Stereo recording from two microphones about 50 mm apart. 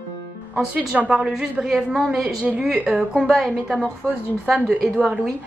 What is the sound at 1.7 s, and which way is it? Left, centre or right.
Speech, centre.